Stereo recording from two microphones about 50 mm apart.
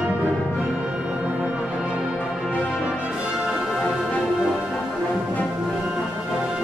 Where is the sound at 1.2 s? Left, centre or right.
Right.